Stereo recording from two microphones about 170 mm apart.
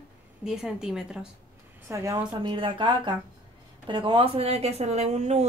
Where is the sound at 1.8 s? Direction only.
15° right (ahead or behind).